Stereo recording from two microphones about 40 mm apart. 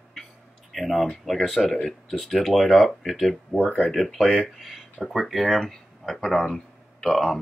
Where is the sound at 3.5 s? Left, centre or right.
Left.